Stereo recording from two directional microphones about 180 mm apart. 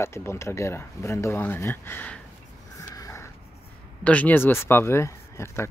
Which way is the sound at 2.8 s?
15° left (ahead or behind).